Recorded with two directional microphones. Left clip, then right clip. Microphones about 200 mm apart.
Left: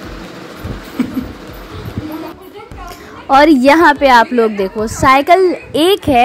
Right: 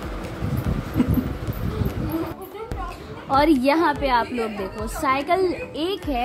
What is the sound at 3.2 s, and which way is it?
A woman's voice, 30° left (ahead or behind).